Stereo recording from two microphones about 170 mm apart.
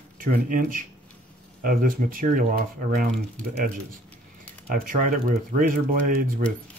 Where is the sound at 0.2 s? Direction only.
55° right (ahead or behind).